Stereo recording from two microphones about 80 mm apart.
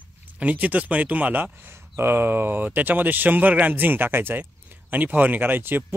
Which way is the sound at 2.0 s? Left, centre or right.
Right.